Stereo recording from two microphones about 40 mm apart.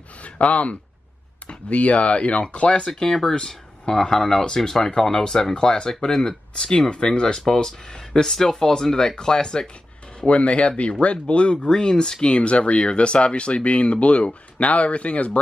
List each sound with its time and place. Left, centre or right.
0.2 s speech: left
2.9 s speech: centre
10.2 s speech: left